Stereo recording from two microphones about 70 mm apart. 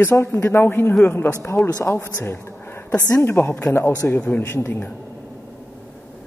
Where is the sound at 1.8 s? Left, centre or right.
Left.